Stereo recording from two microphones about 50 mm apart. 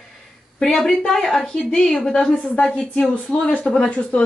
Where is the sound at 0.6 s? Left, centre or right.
Centre.